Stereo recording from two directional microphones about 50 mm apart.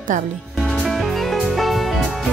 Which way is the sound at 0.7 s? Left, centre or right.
Centre.